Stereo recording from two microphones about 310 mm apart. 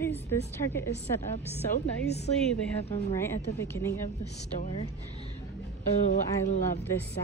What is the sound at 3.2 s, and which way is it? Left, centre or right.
Speech, centre.